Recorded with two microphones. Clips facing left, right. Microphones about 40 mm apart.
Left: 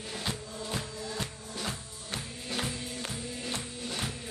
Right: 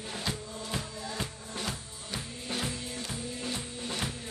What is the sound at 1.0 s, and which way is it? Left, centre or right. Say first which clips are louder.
Music: even; right.